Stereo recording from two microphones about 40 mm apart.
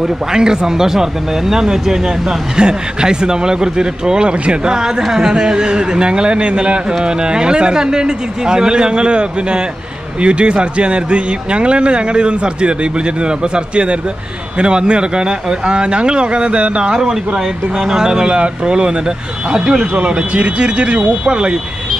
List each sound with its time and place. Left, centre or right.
0.3 s speech: centre
14.6 s speech: right
18.3 s speech: right